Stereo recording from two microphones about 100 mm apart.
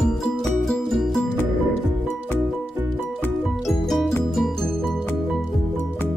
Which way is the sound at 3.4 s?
Centre (ahead or behind).